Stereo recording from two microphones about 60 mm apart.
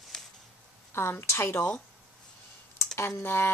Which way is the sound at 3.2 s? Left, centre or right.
Left.